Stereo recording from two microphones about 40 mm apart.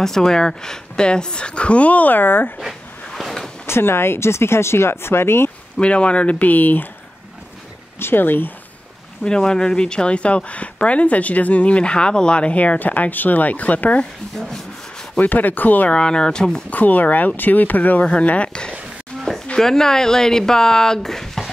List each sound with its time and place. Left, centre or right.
0.0 s a woman's voice: centre; by 2.5 s left
3.6 s speech: left
5.8 s a woman's voice: left
6.4 s speech: left
8.0 s speech: left
9.2 s speech: centre; by 14.0 s left
15.1 s speech: left
15.9 s a woman's voice: left
16.7 s speech: left
18.0 s speech: left
18.5 s a woman's voice: left